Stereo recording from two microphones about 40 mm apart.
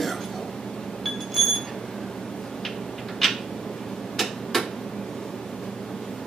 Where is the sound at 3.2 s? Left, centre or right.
Centre.